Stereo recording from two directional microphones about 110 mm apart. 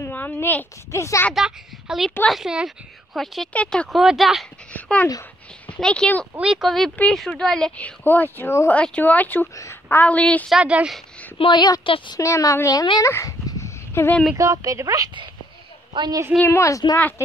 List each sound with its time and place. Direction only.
0.1 s speech: 20° left (ahead or behind)
1.3 s a woman's voice: 5° right (ahead or behind)
4.0 s a woman's voice: 5° right (ahead or behind)
4.7 s a sound: 15° left (ahead or behind)
5.8 s speech: 10° left (ahead or behind)
6.3 s a woman's voice: 5° right (ahead or behind); by 8.7 s 20° left (ahead or behind)
8.7 s speech: 10° left (ahead or behind)
10.5 s speech: 10° right (ahead or behind)
11.3 s a woman's voice: 50° left (ahead or behind)
12.2 s speech: 30° left (ahead or behind)
13.0 s dog: 30° left (ahead or behind)
14.3 s a woman's voice: 30° right (ahead or behind)
16.4 s speech: 25° left (ahead or behind)